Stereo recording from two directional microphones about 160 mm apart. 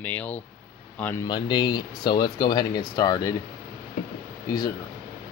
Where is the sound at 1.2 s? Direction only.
25° left (ahead or behind).